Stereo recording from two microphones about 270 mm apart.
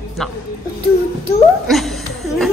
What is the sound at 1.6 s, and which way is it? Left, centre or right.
Laughter, centre.